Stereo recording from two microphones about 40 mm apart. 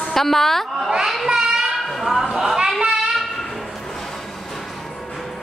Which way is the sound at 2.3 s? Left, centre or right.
Centre.